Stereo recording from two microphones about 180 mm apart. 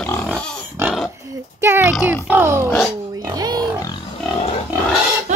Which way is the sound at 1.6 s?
10° right (ahead or behind).